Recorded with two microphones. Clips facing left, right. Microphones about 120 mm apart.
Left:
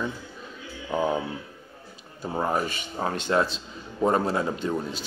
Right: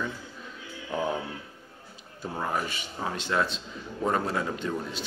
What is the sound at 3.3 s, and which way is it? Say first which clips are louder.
Speech: left 4 dB; 35° left (ahead or behind).